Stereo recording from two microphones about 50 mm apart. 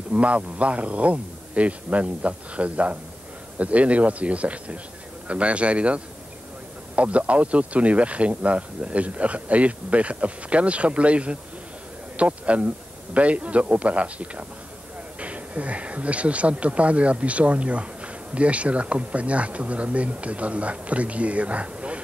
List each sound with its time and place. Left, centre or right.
0.1 s speech: right